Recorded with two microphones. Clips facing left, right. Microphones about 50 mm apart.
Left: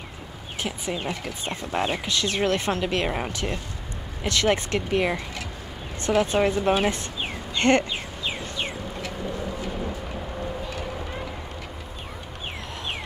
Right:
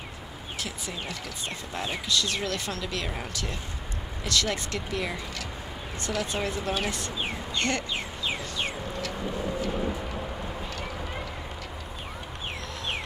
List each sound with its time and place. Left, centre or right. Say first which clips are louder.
0.6 s speech: left 7 dB; left